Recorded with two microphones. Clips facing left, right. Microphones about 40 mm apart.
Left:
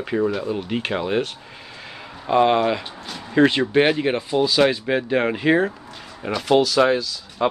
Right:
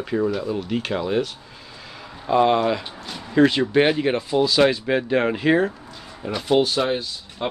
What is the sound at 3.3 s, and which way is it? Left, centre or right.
Speech, centre.